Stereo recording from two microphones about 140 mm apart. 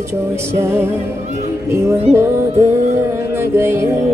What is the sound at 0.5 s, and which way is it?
Music, 20° right (ahead or behind).